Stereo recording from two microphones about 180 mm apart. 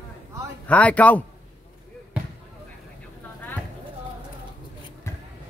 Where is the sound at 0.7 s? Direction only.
5° left (ahead or behind).